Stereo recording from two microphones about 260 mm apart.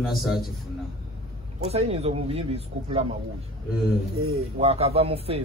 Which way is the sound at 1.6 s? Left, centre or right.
Right.